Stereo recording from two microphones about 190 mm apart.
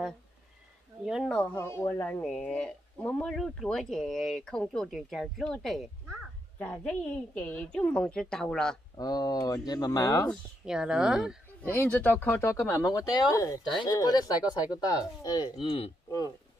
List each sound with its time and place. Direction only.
1.0 s speech: centre (ahead or behind)
8.9 s speech: 20° left (ahead or behind)
10.2 s speech: centre (ahead or behind)
11.6 s speech: 10° left (ahead or behind)